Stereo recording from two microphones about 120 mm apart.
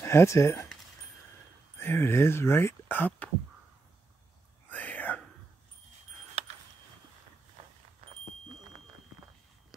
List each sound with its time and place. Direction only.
0.0 s speech: 20° left (ahead or behind)
1.8 s speech: 20° left (ahead or behind)
4.6 s whispering: 15° left (ahead or behind)
6.4 s a sound: 60° right (ahead or behind)